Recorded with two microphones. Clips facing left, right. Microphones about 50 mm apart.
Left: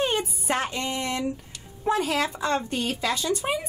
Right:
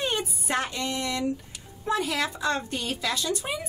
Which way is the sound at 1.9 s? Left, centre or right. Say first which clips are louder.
Left 3 dB; left.